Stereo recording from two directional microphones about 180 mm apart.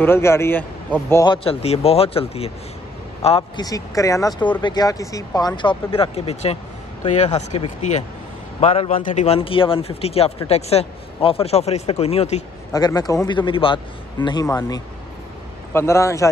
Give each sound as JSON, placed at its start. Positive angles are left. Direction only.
{"t": 0.0, "sound": "a man's voice", "side_deg": 15}
{"t": 1.3, "sound": "speech", "side_deg": 30}
{"t": 8.9, "sound": "speech", "side_deg": 45}
{"t": 12.7, "sound": "a man's voice", "side_deg": 20}